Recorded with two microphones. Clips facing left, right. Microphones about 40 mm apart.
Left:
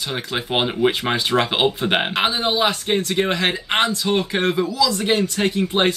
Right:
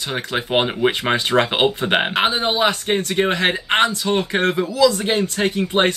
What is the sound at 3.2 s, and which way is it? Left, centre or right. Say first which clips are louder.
Speech: right 2 dB; right.